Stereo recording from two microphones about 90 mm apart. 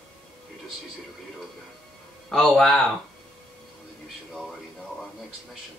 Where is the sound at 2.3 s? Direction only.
5° left (ahead or behind).